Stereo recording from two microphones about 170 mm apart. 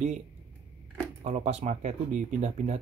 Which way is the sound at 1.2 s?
45° right (ahead or behind).